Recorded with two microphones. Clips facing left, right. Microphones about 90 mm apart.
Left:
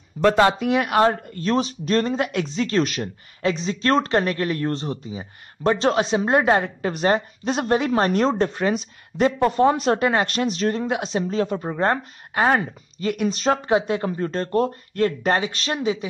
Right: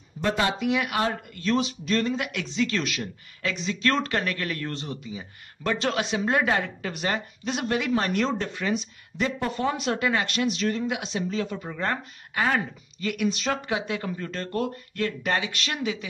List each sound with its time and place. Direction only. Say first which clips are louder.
0.2 s speech: left 8 dB; 50° left (ahead or behind); by 16.1 s 30° left (ahead or behind)